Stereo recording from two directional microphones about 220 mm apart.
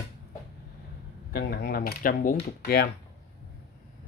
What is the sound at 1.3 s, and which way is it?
Speech, 45° left (ahead or behind).